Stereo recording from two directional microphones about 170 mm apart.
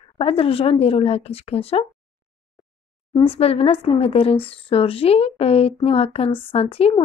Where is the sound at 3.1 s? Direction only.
35° left (ahead or behind).